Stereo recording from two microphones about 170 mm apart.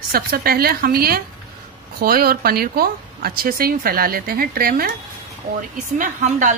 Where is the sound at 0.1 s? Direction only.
60° right (ahead or behind).